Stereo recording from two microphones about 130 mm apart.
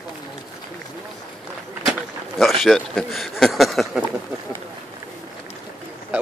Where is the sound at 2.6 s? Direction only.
Centre (ahead or behind).